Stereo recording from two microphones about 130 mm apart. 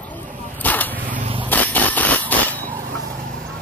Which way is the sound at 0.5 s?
15° left (ahead or behind).